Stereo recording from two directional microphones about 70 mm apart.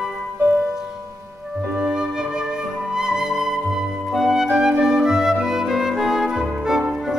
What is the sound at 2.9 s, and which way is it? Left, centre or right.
Flute, centre.